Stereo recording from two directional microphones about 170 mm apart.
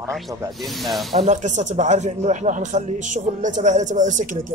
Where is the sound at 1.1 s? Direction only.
40° right (ahead or behind).